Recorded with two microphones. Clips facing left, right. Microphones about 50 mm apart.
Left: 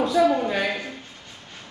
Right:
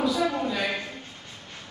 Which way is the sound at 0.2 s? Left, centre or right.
Left.